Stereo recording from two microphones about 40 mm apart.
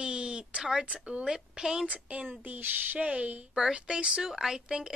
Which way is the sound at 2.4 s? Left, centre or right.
Right.